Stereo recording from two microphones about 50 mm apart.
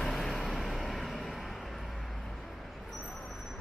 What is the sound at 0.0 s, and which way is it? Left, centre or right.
Vehicle, centre.